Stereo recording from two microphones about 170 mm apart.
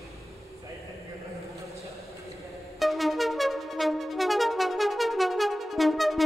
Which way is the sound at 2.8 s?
Centre (ahead or behind).